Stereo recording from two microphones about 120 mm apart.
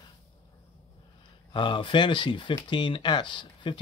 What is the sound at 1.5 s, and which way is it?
Speech, 40° left (ahead or behind).